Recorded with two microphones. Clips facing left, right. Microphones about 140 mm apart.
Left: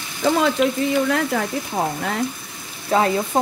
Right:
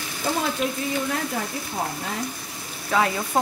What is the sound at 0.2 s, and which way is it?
Speech, 90° left.